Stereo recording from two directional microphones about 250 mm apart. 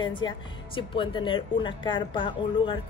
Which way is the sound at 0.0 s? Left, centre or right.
Centre.